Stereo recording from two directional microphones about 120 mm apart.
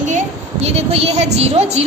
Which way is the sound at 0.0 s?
75° right (ahead or behind).